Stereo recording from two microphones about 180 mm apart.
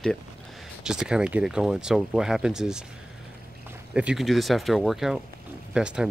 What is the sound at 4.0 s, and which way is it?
Speech, 5° right (ahead or behind).